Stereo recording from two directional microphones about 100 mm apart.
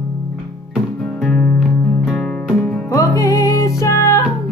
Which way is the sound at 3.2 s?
35° left (ahead or behind).